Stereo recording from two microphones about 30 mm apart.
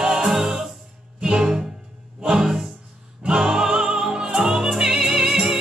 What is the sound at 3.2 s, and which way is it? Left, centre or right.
Music, right.